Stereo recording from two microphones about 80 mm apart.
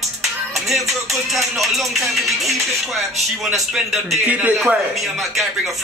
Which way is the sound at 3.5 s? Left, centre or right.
Centre.